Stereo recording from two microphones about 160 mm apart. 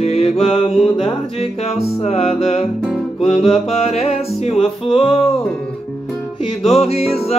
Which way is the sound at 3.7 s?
40° left (ahead or behind).